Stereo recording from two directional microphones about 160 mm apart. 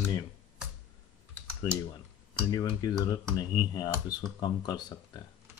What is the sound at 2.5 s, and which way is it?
Speech, 25° left (ahead or behind).